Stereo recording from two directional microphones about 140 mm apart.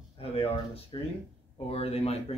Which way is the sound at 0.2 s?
45° left (ahead or behind).